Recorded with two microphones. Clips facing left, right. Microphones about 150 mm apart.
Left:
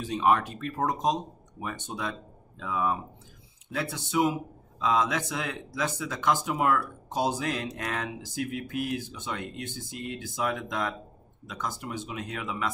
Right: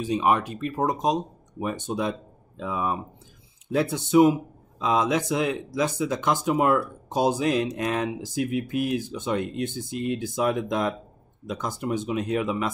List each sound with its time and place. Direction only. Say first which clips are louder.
0.0 s speech: right 2 dB; 15° right (ahead or behind)